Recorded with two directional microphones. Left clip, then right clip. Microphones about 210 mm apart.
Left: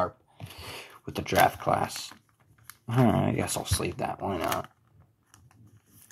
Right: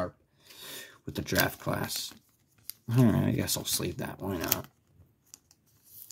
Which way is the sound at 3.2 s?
50° right (ahead or behind).